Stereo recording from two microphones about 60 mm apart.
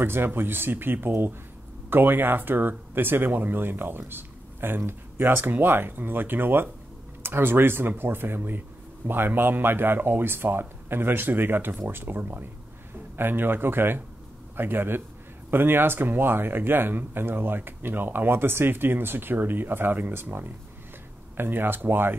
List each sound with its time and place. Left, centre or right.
0.0 s speech: right